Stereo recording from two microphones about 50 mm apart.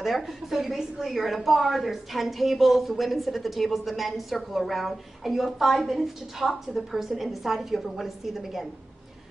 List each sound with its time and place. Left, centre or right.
0.0 s a woman's voice: centre